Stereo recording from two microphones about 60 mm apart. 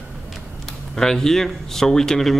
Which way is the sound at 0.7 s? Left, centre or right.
Centre.